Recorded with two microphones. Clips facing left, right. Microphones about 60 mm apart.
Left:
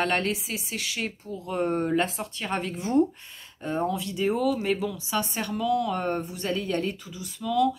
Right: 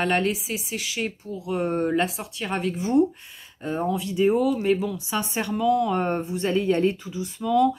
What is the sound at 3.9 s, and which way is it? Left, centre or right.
Speech, right.